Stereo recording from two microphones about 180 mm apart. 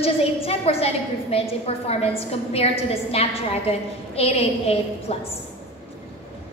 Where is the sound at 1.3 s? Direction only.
35° left (ahead or behind).